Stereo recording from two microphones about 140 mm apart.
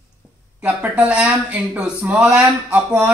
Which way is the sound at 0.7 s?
10° right (ahead or behind).